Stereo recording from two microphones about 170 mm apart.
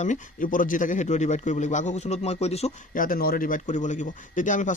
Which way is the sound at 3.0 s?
60° left (ahead or behind).